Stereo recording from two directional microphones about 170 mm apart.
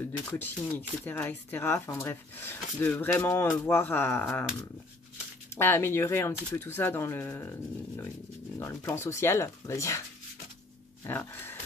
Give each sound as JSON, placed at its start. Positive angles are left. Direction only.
{"t": 0.3, "sound": "speech", "side_deg": 10}
{"t": 5.6, "sound": "speech", "side_deg": 15}
{"t": 11.1, "sound": "speech", "side_deg": 10}